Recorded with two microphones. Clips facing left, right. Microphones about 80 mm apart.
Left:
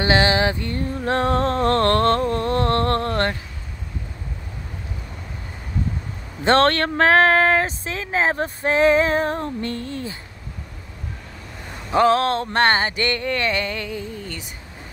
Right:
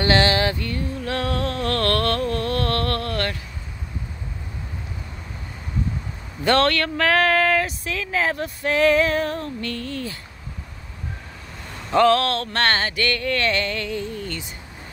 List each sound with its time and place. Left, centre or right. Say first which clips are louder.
0.0 s music: left 1 dB; centre
0.7 s music: left 4 dB; left
6.4 s speech: left 2 dB; left
11.9 s mantra: even; left